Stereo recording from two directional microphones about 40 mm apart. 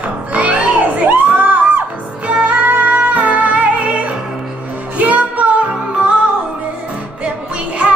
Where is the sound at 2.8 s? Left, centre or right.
Right.